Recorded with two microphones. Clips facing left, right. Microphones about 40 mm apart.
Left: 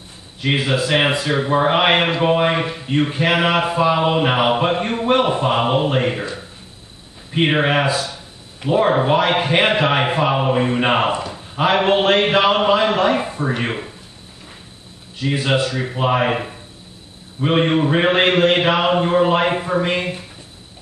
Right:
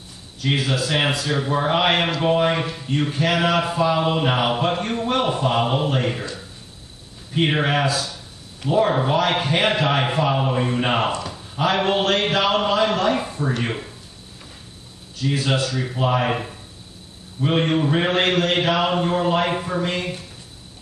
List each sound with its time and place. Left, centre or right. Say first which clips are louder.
0.4 s a man's voice: left 3 dB; left
15.1 s a man's voice: left 3 dB; left